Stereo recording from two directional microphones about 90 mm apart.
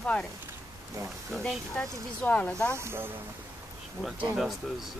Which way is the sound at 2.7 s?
30° right (ahead or behind).